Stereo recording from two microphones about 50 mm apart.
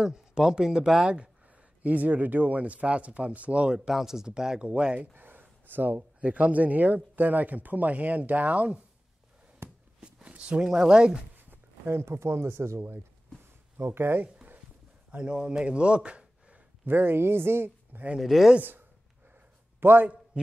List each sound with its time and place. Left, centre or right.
0.0 s speech: centre
1.8 s speech: right
3.7 s speech: centre
5.1 s a sound: right
6.2 s speech: right
9.6 s a sound: right
10.2 s speech: right
11.3 s a sound: right
11.9 s speech: right
13.7 s speech: right
15.0 s a man's voice: right
16.8 s speech: right
18.2 s speech: centre
19.8 s a man's voice: right